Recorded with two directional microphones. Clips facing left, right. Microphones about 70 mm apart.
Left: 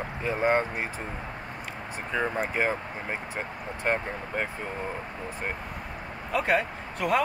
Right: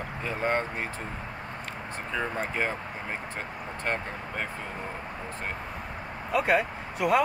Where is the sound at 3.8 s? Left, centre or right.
Centre.